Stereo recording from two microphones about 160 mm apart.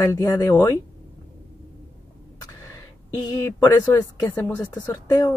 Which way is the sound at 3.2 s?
25° left (ahead or behind).